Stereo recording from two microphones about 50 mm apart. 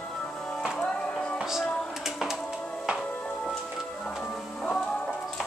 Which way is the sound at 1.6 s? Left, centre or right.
Left.